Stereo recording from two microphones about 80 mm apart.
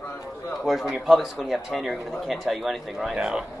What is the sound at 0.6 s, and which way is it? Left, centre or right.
A man's voice, centre.